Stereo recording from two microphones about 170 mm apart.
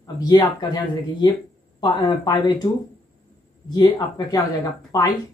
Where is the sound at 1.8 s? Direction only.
25° left (ahead or behind).